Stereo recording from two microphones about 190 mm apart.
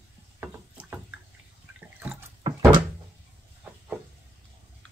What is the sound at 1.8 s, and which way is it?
Water, 10° right (ahead or behind).